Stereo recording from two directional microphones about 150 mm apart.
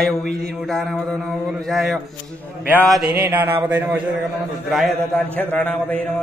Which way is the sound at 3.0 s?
90° right.